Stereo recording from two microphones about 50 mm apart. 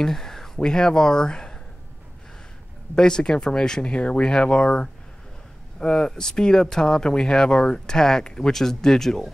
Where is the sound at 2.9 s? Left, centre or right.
Centre.